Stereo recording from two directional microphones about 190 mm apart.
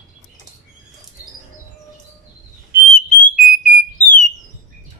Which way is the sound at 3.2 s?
40° left (ahead or behind).